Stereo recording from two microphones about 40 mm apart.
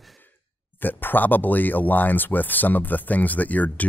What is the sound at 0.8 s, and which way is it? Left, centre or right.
Speech, left.